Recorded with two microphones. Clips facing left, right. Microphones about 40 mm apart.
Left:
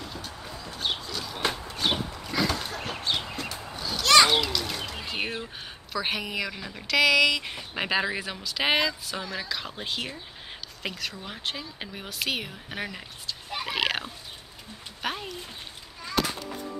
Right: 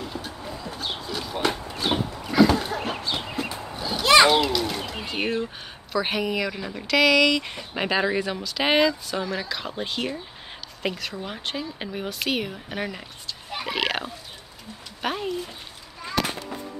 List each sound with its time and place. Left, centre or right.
0.0 s a sound: centre
1.9 s chicken: centre
3.3 s a sound: centre
3.6 s children playing: centre
4.4 s bird: centre
5.9 s speech: centre